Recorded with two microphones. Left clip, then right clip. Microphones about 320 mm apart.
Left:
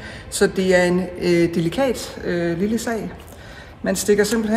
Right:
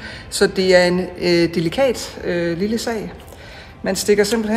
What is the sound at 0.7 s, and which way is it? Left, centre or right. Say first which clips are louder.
Speech: right 3 dB; centre.